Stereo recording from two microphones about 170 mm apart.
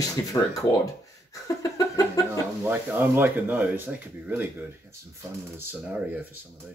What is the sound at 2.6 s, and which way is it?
Speech, 10° right (ahead or behind).